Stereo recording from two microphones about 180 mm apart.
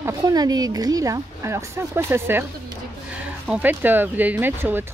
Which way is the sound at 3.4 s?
10° right (ahead or behind).